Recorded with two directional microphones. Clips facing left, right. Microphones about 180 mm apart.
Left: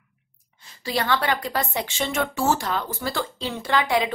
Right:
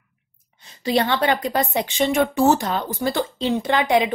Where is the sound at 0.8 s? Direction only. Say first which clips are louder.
Right 4 dB; 20° right (ahead or behind).